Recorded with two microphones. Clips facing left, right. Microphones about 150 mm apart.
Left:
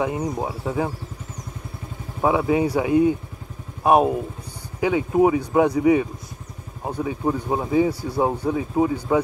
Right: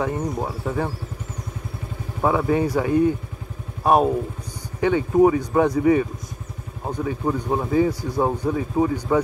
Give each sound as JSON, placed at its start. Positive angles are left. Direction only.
{"t": 0.0, "sound": "speech", "side_deg": 10}
{"t": 2.2, "sound": "speech", "side_deg": 10}